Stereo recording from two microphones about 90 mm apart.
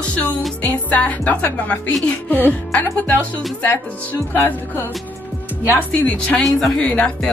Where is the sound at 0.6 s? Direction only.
15° left (ahead or behind).